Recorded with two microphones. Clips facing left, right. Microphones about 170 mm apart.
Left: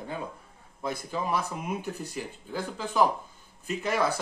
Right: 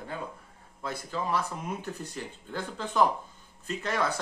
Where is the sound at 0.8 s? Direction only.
15° left (ahead or behind).